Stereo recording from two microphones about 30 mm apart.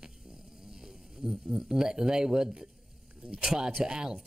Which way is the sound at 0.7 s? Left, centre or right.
Centre.